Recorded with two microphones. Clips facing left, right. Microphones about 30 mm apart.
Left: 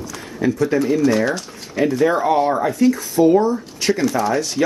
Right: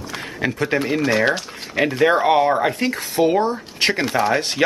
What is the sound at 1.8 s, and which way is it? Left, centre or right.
A man's voice, right.